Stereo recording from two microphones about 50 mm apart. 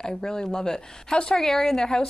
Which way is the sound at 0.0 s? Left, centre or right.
Centre.